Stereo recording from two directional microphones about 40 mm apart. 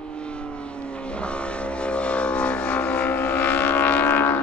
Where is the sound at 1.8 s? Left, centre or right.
Left.